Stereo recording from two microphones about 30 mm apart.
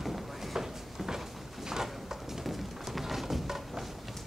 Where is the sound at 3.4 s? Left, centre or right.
Centre.